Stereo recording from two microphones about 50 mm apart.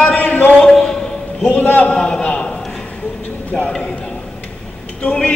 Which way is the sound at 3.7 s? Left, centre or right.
Centre.